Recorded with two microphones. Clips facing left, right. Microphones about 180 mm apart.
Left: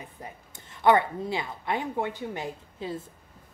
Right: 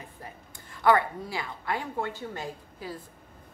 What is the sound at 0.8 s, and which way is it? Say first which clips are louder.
A woman's voice: left 2 dB; 20° left (ahead or behind).